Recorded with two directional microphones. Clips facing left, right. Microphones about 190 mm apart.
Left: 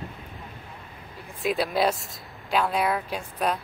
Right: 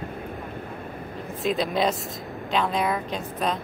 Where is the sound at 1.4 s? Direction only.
5° left (ahead or behind).